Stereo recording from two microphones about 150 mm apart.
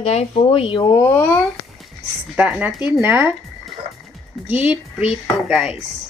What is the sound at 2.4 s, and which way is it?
Speech, 10° right (ahead or behind).